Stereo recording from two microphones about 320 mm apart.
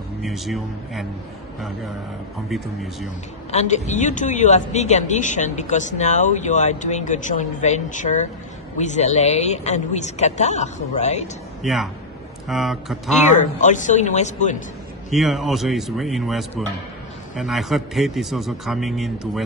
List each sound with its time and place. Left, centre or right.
0.2 s a man's voice: centre
2.5 s a man's voice: centre
3.5 s a woman's voice: left
11.6 s a man's voice: centre
13.3 s a woman's voice: left
15.0 s a man's voice: centre